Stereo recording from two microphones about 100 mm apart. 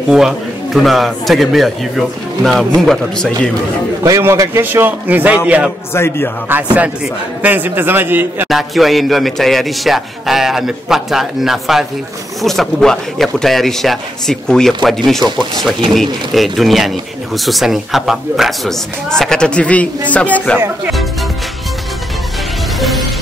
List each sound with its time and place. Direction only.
0.1 s speech: 5° right (ahead or behind)
4.2 s a man's voice: 30° right (ahead or behind); by 5.7 s 10° right (ahead or behind)
5.9 s speech: 25° left (ahead or behind)
6.5 s a man's voice: 15° right (ahead or behind)
8.5 s speech: centre (ahead or behind)
15.2 s speech: 45° right (ahead or behind)
15.9 s speech: centre (ahead or behind)
20.5 s a man's voice: 20° right (ahead or behind)
22.8 s music: centre (ahead or behind)